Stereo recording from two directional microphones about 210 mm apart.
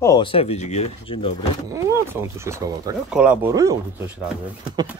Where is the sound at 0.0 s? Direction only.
20° left (ahead or behind).